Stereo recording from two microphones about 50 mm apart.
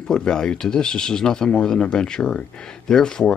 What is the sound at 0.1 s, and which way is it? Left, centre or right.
Speech, centre.